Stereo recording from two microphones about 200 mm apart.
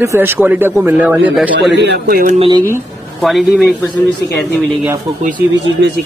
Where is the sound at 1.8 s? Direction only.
50° right (ahead or behind).